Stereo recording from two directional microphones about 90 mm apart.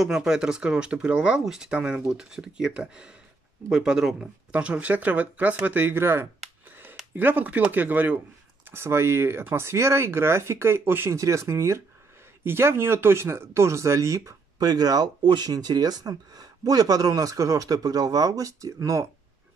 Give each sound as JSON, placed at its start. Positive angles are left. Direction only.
{"t": 0.0, "sound": "speech", "side_deg": -5}
{"t": 14.6, "sound": "speech", "side_deg": -50}